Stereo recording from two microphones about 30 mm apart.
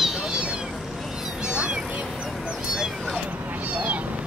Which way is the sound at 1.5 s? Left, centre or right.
Right.